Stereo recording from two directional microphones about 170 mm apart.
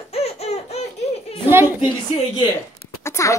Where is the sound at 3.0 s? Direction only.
15° left (ahead or behind).